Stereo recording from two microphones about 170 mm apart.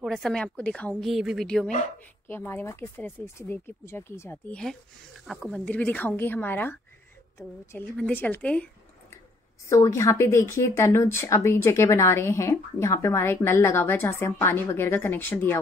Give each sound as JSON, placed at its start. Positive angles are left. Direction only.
{"t": 0.0, "sound": "a woman's voice", "side_deg": 0}
{"t": 9.7, "sound": "speech", "side_deg": 20}